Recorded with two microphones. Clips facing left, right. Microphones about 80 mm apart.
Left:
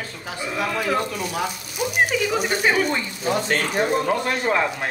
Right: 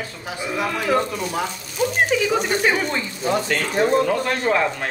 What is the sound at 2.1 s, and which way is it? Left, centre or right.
Speech, centre.